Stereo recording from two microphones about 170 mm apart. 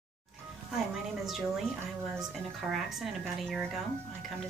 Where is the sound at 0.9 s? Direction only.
Centre (ahead or behind).